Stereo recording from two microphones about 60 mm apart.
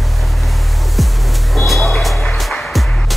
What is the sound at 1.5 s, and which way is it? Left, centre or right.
Music, centre.